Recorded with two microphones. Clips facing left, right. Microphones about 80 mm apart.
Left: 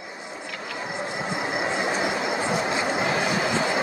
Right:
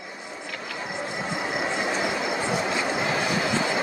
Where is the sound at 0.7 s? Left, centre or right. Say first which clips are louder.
Left 1 dB; centre.